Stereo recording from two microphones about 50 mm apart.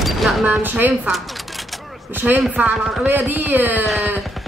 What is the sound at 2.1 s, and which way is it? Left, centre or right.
A woman's voice, right.